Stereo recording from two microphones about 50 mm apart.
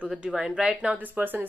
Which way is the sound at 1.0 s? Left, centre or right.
Right.